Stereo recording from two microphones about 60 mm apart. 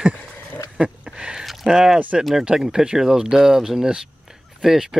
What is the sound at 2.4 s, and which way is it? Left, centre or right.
Speech, centre.